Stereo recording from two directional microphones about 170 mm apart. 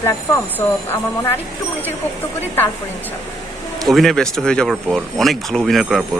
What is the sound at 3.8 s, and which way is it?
Speech, centre (ahead or behind).